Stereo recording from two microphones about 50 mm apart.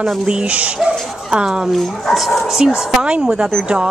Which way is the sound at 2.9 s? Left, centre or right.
Centre.